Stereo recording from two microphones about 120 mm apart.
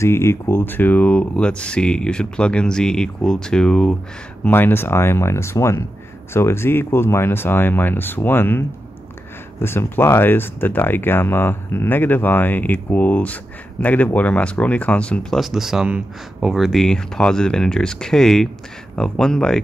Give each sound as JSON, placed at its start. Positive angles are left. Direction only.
{"t": 0.0, "sound": "speech", "side_deg": 20}
{"t": 4.5, "sound": "speech", "side_deg": 20}